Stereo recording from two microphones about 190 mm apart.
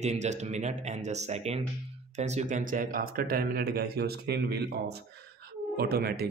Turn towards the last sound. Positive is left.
turn(degrees=-55)  # may be behind; listen again after turning